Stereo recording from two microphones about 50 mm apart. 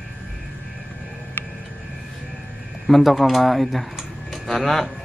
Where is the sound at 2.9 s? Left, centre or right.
Centre.